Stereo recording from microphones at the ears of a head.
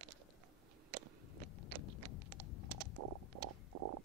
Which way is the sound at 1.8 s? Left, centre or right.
Left.